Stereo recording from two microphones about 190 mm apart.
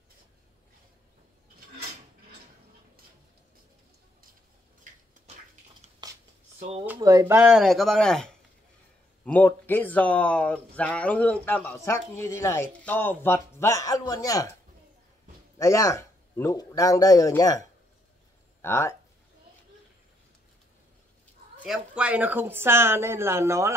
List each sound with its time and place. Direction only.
6.0 s a sound: 20° right (ahead or behind)
7.0 s a man's voice: 20° right (ahead or behind); by 14.5 s 20° left (ahead or behind)
15.5 s speech: 15° left (ahead or behind)
21.6 s speech: 5° right (ahead or behind)